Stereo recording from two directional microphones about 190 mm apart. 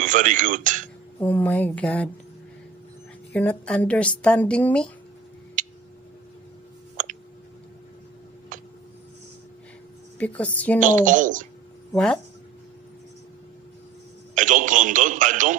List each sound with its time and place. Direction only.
0.0 s speech: 45° right (ahead or behind)
1.2 s a woman's voice: 10° left (ahead or behind)
3.3 s a woman's voice: 5° left (ahead or behind)
5.6 s a sound: 45° right (ahead or behind)
8.5 s a sound: 45° right (ahead or behind)
10.1 s a woman's voice: 5° left (ahead or behind)
10.8 s speech: 45° right (ahead or behind)
11.9 s speech: 5° left (ahead or behind)
14.3 s a sound: 45° right (ahead or behind)